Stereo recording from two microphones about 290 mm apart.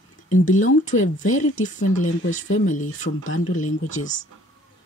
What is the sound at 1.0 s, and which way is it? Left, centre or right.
Speech, left.